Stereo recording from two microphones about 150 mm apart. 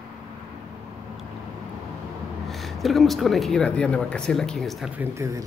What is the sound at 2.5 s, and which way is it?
Speech, centre (ahead or behind).